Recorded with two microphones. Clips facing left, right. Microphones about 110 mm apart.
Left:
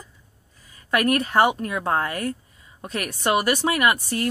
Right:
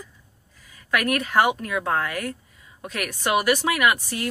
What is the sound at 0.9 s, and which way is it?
Speech, 35° left (ahead or behind).